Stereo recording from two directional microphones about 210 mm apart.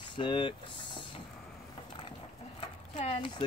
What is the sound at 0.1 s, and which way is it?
Speech, 25° left (ahead or behind).